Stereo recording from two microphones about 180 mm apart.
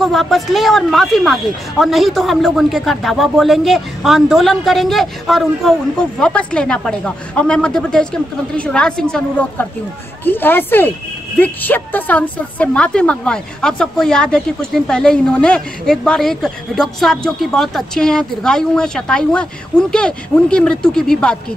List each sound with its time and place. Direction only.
0.0 s speech: centre (ahead or behind)